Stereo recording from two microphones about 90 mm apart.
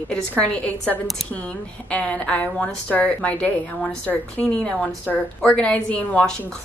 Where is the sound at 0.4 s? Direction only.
15° left (ahead or behind).